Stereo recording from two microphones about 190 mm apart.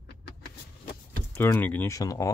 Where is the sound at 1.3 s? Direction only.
10° left (ahead or behind).